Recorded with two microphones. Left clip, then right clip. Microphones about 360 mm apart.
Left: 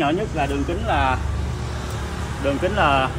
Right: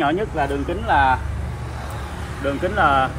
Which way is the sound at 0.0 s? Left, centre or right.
Centre.